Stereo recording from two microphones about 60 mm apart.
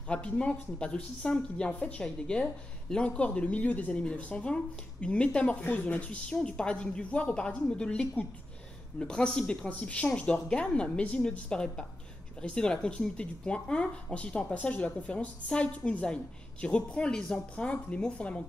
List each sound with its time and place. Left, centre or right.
0.1 s speech: centre